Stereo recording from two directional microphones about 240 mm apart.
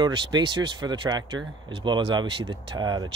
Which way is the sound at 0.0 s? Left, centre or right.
Centre.